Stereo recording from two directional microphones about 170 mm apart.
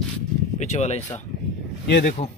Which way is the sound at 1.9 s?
60° left (ahead or behind).